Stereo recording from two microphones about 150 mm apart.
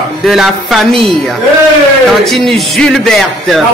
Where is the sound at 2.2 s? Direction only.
Centre (ahead or behind).